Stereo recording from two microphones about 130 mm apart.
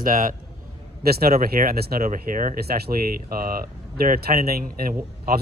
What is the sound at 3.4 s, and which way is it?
Speech, 90° right.